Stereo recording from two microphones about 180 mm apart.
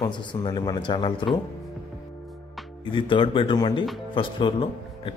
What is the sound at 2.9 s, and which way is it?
A man's voice, 30° left (ahead or behind).